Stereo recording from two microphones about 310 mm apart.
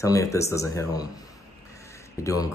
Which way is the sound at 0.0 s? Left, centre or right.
Centre.